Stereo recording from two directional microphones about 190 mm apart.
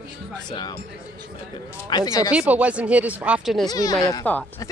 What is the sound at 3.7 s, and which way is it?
Speech, 20° left (ahead or behind).